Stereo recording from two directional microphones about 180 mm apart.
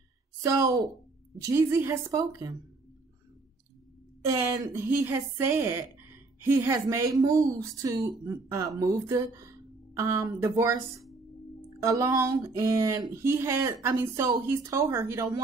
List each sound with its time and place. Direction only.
0.4 s speech: 20° right (ahead or behind)
4.2 s speech: 15° right (ahead or behind)